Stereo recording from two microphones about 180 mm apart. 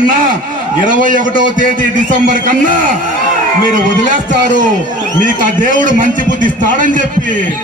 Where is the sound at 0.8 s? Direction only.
45° right (ahead or behind).